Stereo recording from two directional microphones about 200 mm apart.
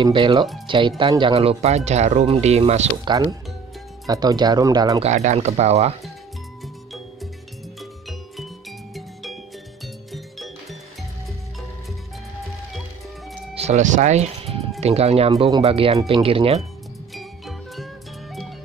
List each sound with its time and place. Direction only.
0.0 s speech: 25° right (ahead or behind)
5.0 s speech: 35° right (ahead or behind)
8.1 s music: centre (ahead or behind)
13.6 s speech: 35° right (ahead or behind)
17.1 s music: centre (ahead or behind)